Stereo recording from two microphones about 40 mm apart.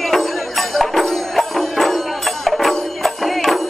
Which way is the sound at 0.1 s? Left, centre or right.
Centre.